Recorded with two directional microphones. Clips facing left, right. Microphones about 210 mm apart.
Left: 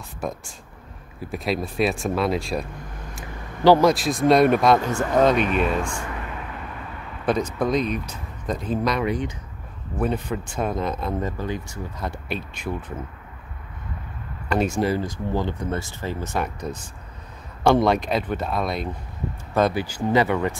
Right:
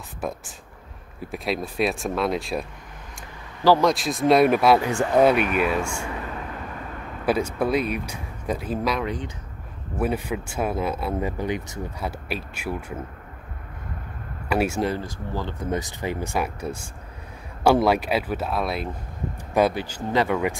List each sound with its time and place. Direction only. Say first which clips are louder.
0.2 s speech: even; centre (ahead or behind)
3.8 s speech: left 2 dB; centre (ahead or behind)
7.2 s speech: even; 5° right (ahead or behind)
9.0 s speech: left 5 dB; 10° left (ahead or behind)
9.9 s speech: even; 10° right (ahead or behind)
12.0 s speech: left 2 dB; 5° right (ahead or behind)
14.5 s speech: left 1 dB; 5° right (ahead or behind)
14.9 s speech: left 4 dB; 15° left (ahead or behind)
15.7 s speech: right 1 dB; 15° right (ahead or behind)
19.7 s speech: left 4 dB; 5° left (ahead or behind)